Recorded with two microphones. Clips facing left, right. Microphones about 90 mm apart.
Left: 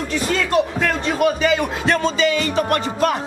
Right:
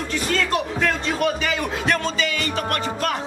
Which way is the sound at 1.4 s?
15° left (ahead or behind).